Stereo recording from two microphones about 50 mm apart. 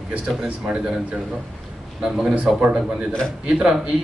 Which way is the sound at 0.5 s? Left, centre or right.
Right.